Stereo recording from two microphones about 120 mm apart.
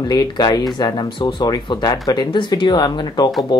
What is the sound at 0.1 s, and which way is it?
Speech, 35° left (ahead or behind).